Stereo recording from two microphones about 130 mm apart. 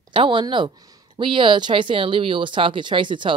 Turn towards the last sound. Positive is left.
turn(degrees=-40)  # may be behind; listen again after turning